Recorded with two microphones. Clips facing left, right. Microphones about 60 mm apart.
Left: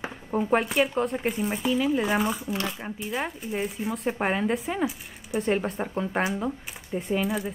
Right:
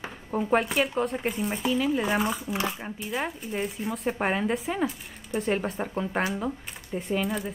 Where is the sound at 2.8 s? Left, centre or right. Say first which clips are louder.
Left 1 dB; centre.